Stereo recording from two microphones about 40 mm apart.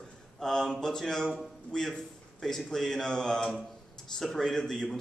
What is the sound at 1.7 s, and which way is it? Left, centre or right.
A man's voice, centre.